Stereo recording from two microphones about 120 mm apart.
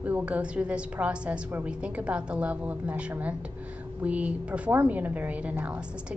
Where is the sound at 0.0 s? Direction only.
10° right (ahead or behind).